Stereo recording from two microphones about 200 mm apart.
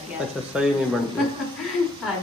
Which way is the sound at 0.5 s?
5° right (ahead or behind).